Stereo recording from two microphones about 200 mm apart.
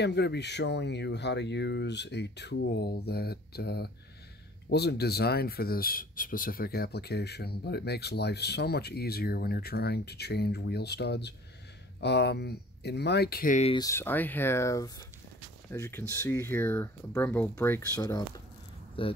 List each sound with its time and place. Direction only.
0.0 s speech: 55° left (ahead or behind); by 13.7 s 35° left (ahead or behind)
13.7 s speech: 15° left (ahead or behind)